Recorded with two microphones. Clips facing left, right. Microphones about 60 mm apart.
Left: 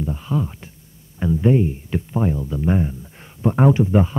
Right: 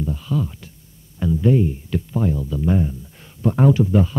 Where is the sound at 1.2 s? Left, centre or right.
Left.